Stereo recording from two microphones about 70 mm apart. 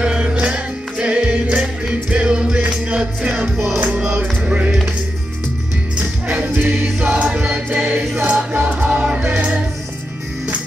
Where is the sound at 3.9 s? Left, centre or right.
Centre.